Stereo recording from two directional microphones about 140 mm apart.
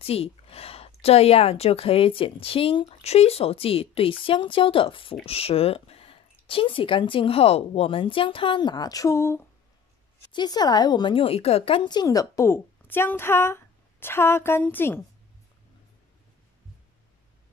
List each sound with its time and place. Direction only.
0.0 s speech: 45° left (ahead or behind); by 9.4 s 20° left (ahead or behind)
10.3 s a woman's voice: 30° left (ahead or behind)